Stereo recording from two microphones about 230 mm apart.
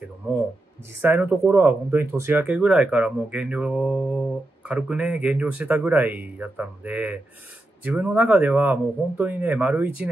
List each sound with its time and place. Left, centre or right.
1.0 s speech: centre